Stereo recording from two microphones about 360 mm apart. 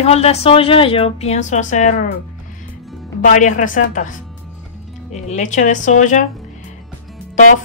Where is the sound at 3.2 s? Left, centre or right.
Left.